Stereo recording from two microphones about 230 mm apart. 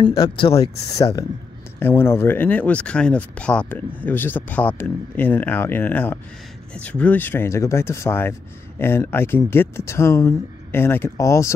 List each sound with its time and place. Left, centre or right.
0.0 s speech: left